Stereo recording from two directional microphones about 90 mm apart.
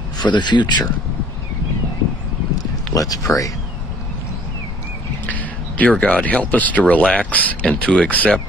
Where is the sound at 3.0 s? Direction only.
40° left (ahead or behind).